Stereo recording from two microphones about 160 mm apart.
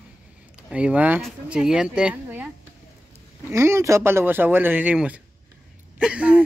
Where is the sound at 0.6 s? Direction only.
5° right (ahead or behind).